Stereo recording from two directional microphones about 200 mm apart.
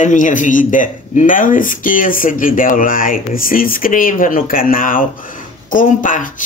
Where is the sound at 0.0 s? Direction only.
40° left (ahead or behind).